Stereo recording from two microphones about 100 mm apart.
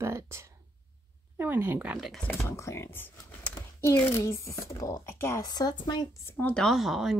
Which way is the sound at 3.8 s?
30° left (ahead or behind).